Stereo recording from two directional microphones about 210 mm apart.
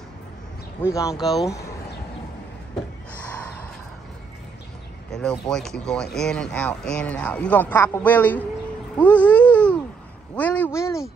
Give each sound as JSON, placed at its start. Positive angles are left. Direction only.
{"t": 0.8, "sound": "a man's voice", "side_deg": 15}
{"t": 1.1, "sound": "speech", "side_deg": 0}
{"t": 3.2, "sound": "a sound", "side_deg": 5}
{"t": 5.5, "sound": "speech", "side_deg": 0}
{"t": 8.9, "sound": "a sound", "side_deg": 5}
{"t": 10.3, "sound": "a man's voice", "side_deg": 5}